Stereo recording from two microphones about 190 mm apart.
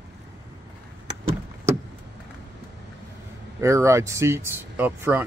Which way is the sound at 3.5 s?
15° right (ahead or behind).